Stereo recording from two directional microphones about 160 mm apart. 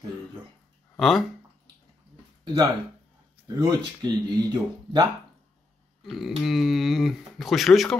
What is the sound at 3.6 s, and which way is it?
Speech, 25° right (ahead or behind).